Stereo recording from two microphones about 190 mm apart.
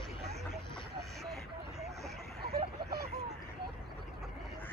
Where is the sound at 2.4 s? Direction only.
55° right (ahead or behind).